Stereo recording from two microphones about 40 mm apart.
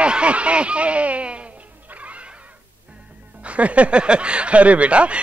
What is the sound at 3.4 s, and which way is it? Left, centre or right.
Speech, right.